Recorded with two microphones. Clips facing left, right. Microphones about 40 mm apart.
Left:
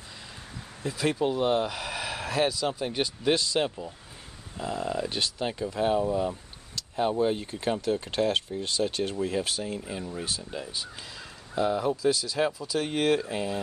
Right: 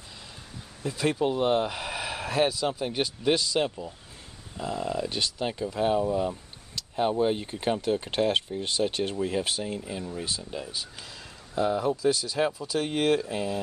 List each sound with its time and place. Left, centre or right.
0.8 s speech: centre
6.7 s a sound: centre
7.6 s speech: centre
9.1 s speech: centre
9.8 s speech: centre